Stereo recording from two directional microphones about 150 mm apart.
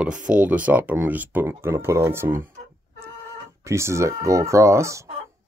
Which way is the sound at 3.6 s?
20° right (ahead or behind).